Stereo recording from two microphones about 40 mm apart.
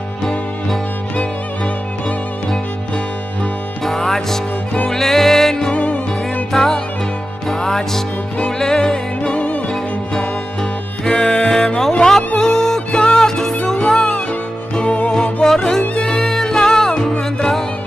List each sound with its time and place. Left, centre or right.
3.8 s music: centre
5.7 s music: left
6.5 s music: centre
9.3 s music: left
11.1 s music: centre
14.8 s music: left
15.4 s music: centre